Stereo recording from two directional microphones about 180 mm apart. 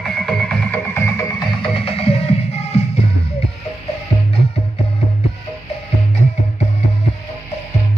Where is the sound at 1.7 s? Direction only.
30° left (ahead or behind).